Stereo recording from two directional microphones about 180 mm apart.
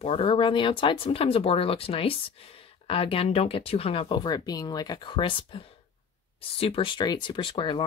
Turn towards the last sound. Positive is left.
turn(degrees=30)  # may be behind; listen again after turning